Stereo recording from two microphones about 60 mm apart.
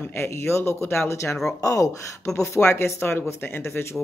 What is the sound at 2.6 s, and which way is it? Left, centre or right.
Speech, left.